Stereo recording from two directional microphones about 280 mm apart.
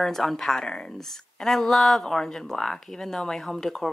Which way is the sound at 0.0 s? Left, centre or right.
Centre.